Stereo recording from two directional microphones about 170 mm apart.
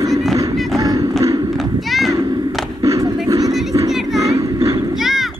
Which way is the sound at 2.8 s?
20° right (ahead or behind).